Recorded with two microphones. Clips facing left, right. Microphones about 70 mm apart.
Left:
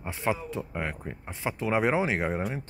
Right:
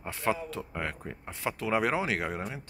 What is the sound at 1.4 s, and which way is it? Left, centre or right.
Speech, left.